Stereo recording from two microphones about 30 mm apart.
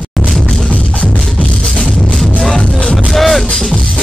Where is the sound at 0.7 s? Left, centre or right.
Left.